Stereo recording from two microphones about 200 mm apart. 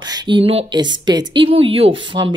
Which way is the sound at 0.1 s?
25° right (ahead or behind).